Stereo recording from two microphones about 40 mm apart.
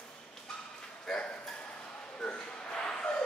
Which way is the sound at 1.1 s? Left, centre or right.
Centre.